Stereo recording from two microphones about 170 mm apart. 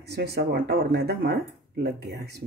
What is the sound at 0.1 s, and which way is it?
Speech, 70° right (ahead or behind).